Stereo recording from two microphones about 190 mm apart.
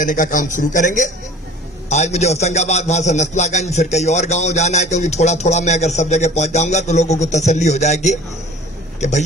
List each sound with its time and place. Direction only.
0.0 s a man's voice: 45° left (ahead or behind)